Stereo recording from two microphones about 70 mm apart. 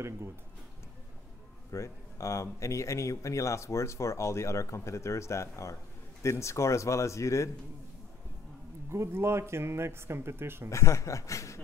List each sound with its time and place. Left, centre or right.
1.7 s speech: left
8.9 s speech: right
10.7 s speech: left